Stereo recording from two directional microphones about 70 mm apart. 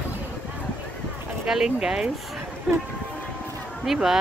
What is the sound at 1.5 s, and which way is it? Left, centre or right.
Speech, centre.